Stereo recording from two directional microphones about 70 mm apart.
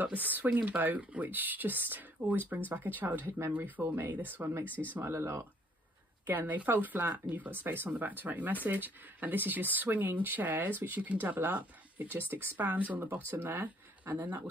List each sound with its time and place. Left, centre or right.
0.0 s speech: right
4.6 s speech: left
4.9 s speech: right
6.2 s speech: right